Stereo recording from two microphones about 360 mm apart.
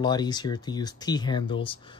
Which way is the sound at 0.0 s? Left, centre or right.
Centre.